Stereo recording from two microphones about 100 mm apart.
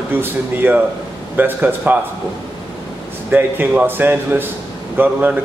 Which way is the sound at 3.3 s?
20° right (ahead or behind).